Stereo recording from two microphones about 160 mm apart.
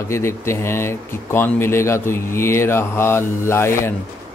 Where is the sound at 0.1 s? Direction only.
15° left (ahead or behind).